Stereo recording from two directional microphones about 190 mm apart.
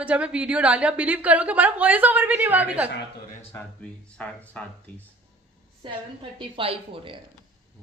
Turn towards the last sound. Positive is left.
turn(degrees=-30)  # may be behind; listen again after turning